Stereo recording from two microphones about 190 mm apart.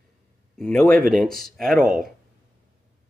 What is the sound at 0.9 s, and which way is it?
Speech, 45° right (ahead or behind).